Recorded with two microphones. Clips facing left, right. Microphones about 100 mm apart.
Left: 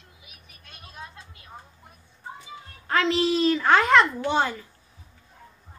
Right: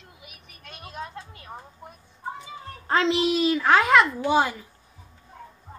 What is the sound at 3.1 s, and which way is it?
A child's voice, 10° right (ahead or behind).